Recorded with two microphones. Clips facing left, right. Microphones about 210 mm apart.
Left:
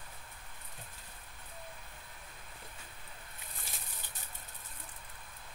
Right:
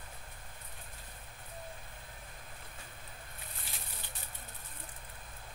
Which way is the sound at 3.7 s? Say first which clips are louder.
Even; 45° left (ahead or behind).